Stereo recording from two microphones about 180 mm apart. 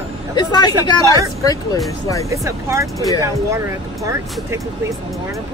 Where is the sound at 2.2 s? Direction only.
15° right (ahead or behind).